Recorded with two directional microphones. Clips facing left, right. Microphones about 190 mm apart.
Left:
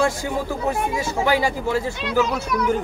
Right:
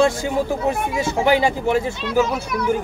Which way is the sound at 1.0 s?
20° right (ahead or behind).